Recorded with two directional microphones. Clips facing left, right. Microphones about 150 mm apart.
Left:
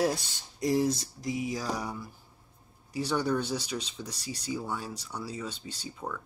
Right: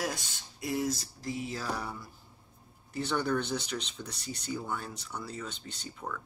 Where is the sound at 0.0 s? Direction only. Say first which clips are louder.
Left 7 dB; 35° left (ahead or behind).